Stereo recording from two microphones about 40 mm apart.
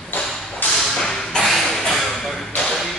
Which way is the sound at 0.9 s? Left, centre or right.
Centre.